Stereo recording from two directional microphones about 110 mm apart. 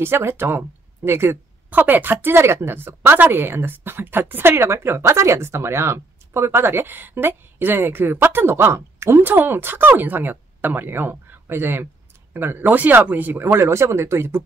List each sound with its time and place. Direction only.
0.0 s speech: 20° right (ahead or behind)